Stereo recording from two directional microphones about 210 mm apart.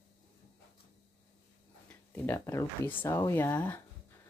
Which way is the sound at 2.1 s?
10° left (ahead or behind).